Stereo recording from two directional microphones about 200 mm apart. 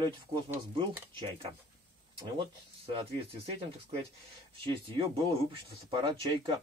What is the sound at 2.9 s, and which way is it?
Speech, 30° right (ahead or behind).